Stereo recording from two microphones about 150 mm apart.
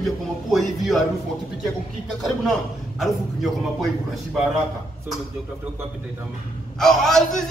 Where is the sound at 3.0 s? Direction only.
Centre (ahead or behind).